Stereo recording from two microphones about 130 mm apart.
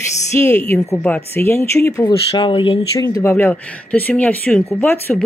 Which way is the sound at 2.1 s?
45° left (ahead or behind).